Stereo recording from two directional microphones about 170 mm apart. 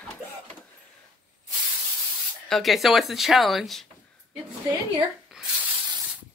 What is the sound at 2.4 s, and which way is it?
Speech, centre (ahead or behind).